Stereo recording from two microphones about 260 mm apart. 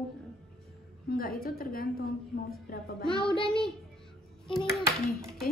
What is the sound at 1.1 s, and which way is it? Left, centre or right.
A woman's voice, left.